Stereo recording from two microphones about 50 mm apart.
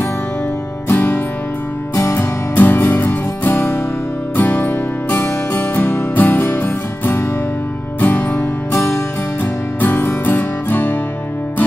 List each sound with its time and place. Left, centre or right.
0.8 s music: left